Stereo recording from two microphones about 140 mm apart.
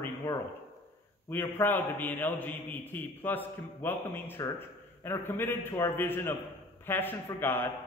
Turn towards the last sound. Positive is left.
turn(degrees=15)  # may be behind; listen again after turning